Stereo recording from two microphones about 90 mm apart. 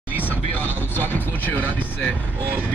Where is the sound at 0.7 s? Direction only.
20° left (ahead or behind).